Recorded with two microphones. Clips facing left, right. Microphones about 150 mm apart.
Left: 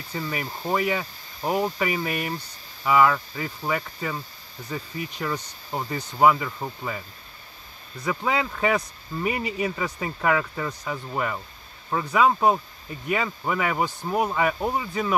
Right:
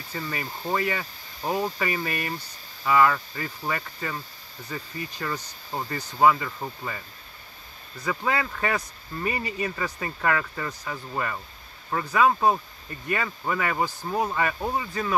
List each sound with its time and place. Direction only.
0.1 s speech: 10° left (ahead or behind)
8.0 s speech: 15° left (ahead or behind)